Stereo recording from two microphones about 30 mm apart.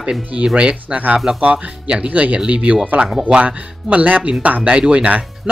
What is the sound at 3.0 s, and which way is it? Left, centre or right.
Speech, right.